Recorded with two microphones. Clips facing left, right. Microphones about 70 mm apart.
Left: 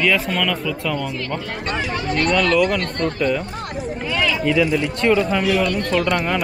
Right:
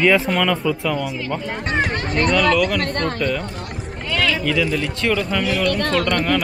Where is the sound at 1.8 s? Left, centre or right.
Right.